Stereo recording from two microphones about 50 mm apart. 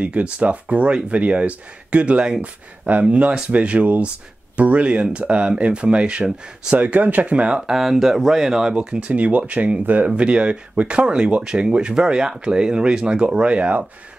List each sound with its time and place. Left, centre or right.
0.0 s speech: right
6.8 s speech: right
7.6 s speech: centre
8.7 s speech: right